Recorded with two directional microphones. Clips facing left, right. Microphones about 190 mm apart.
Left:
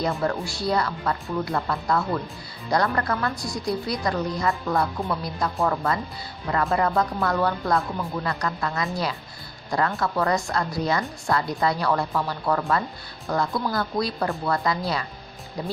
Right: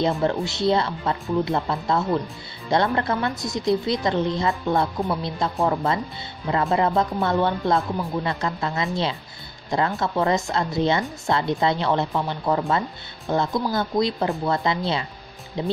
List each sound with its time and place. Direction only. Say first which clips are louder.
0.0 s a woman's voice: right 3 dB; 25° right (ahead or behind)